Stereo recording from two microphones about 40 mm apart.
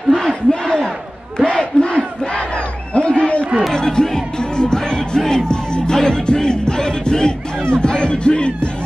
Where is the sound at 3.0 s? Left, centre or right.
Left.